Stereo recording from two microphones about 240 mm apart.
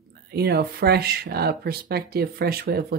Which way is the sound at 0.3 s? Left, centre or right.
Right.